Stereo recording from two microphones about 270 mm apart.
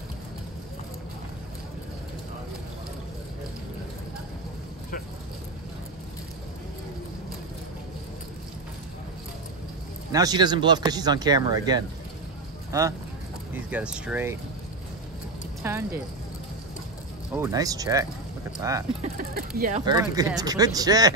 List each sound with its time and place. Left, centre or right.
10.1 s speech: centre
15.6 s speech: centre
17.3 s speech: centre
19.1 s speech: right
19.8 s speech: centre